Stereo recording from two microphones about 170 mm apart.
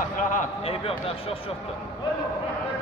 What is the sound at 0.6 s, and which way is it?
Speech, 35° left (ahead or behind).